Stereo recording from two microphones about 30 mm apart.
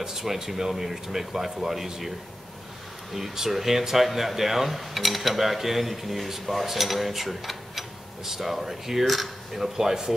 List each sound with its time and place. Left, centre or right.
0.0 s speech: centre
3.2 s speech: centre
9.6 s speech: centre